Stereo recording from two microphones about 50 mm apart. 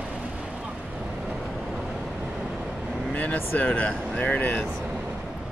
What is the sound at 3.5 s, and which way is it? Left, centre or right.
Speech, left.